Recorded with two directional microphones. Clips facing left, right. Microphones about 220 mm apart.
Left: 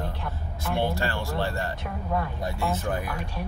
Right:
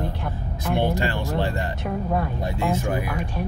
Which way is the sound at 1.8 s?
40° right (ahead or behind).